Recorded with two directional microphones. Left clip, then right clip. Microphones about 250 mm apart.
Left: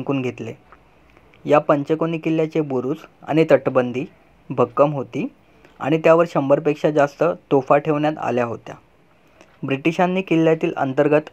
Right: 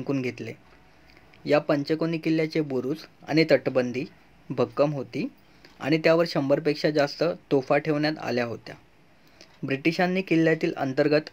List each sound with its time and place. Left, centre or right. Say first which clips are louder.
0.0 s speech: left 5 dB; centre
1.7 s speech: left 5 dB; left
2.1 s speech: left 5 dB; centre
9.6 s speech: left 5 dB; centre